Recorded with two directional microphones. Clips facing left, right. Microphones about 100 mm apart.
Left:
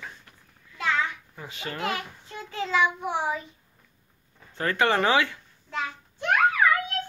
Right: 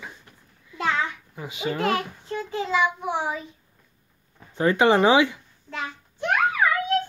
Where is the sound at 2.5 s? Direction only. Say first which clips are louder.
Right 1 dB; 10° right (ahead or behind).